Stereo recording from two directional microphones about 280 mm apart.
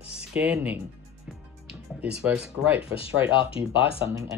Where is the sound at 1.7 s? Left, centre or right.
Centre.